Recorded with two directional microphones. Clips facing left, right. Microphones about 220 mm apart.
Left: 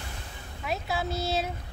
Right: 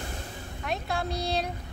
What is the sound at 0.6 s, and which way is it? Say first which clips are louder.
Speech: even; 5° left (ahead or behind).